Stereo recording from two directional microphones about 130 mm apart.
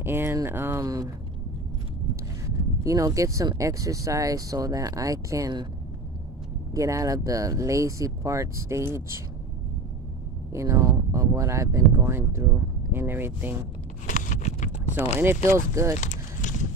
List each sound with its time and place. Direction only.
0.0 s speech: 20° right (ahead or behind)
2.8 s speech: 25° right (ahead or behind)
6.7 s speech: 25° right (ahead or behind)
10.5 s speech: 25° right (ahead or behind)
14.0 s a sound: 75° left (ahead or behind)
15.1 s speech: 20° right (ahead or behind)
16.0 s a sound: 70° left (ahead or behind)